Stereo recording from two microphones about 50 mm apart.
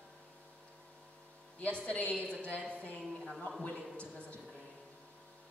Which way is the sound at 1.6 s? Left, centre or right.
Left.